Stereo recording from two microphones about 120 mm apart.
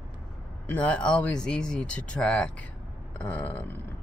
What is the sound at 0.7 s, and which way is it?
Speech, 10° left (ahead or behind).